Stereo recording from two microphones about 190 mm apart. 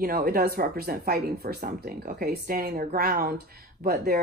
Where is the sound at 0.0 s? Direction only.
50° right (ahead or behind).